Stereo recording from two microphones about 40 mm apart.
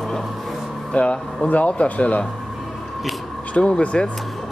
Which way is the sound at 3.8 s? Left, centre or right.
Left.